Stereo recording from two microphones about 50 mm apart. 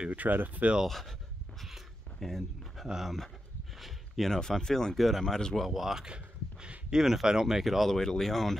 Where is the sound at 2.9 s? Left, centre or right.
Centre.